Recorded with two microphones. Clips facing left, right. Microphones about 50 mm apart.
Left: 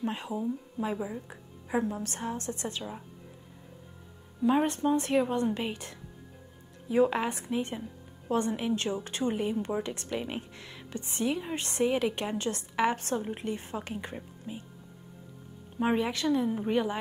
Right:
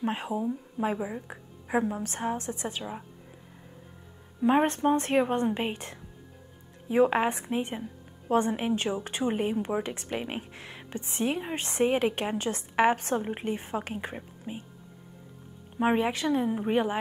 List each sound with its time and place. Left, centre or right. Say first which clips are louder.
0.0 s a woman's voice: right 3 dB; right
4.4 s a woman's voice: right 2 dB; right
15.8 s a woman's voice: right 2 dB; right